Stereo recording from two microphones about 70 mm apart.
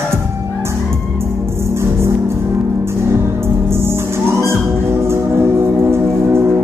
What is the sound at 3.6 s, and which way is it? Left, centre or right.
Music, right.